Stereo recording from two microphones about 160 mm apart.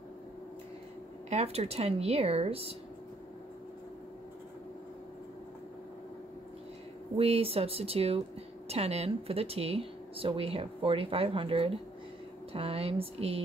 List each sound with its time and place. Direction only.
1.3 s speech: 40° right (ahead or behind)
7.2 s speech: 40° right (ahead or behind)